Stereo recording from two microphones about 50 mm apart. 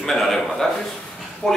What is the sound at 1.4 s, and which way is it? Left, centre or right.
Speech, centre.